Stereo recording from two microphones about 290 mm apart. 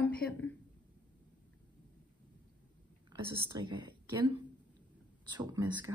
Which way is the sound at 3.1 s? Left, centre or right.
Centre.